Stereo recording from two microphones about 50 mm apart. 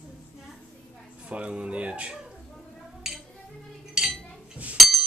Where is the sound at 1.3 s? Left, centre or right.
Right.